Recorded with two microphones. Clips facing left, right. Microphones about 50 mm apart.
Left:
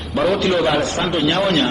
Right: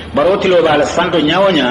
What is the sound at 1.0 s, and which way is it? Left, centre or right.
Speech, right.